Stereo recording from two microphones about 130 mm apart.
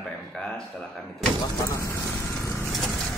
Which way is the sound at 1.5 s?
25° left (ahead or behind).